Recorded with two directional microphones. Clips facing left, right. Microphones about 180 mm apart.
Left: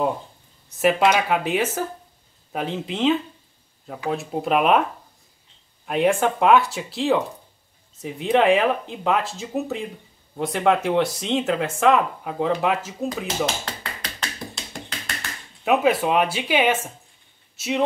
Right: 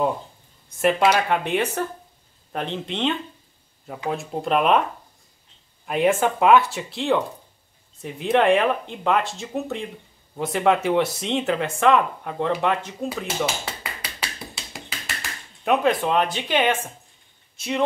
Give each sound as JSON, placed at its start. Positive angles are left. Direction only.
{"t": 0.7, "sound": "speech", "side_deg": 0}
{"t": 5.9, "sound": "speech", "side_deg": 0}
{"t": 13.8, "sound": "tap", "side_deg": -5}
{"t": 15.6, "sound": "speech", "side_deg": 5}